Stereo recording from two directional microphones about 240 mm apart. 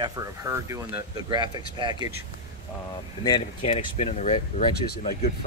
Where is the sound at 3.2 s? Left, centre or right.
Centre.